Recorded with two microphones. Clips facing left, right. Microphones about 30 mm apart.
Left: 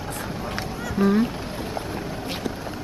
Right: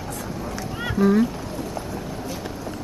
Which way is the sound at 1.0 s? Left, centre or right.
Left.